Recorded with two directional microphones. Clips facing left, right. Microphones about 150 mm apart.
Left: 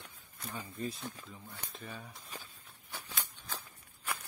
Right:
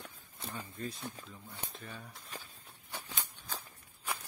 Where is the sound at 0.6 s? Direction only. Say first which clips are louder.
Left 3 dB; 10° left (ahead or behind).